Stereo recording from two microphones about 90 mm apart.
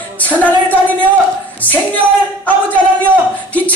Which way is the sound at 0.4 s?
20° left (ahead or behind).